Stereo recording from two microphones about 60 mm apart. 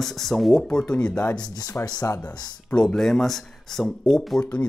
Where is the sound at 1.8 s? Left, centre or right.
Left.